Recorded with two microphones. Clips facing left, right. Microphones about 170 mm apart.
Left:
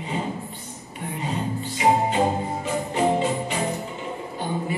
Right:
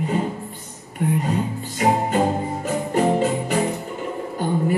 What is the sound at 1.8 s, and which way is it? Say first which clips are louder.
Music: right 1 dB; 50° right (ahead or behind).